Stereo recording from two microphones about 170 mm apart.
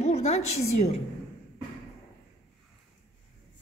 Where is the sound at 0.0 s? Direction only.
40° left (ahead or behind).